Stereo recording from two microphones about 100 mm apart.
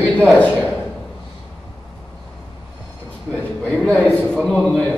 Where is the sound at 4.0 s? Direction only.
15° left (ahead or behind).